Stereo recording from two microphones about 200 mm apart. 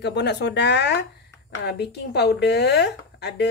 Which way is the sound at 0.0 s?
55° left (ahead or behind).